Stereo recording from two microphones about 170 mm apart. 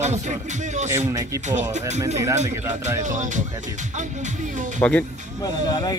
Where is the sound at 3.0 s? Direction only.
45° right (ahead or behind).